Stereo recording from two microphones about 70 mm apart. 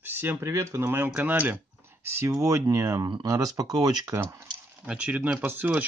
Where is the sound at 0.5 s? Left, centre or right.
Right.